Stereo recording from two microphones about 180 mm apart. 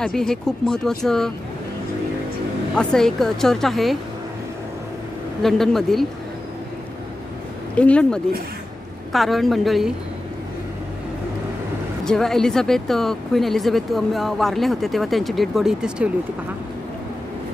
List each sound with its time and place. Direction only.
0.0 s speech: 5° left (ahead or behind)
2.7 s speech: 5° left (ahead or behind)
5.4 s speech: centre (ahead or behind)
7.7 s speech: 5° left (ahead or behind)
12.0 s speech: 5° left (ahead or behind)